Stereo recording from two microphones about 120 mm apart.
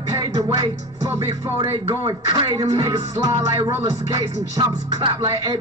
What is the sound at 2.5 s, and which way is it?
Music, 25° right (ahead or behind).